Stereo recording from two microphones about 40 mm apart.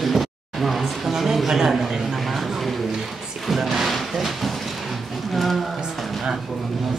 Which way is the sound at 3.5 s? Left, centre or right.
Centre.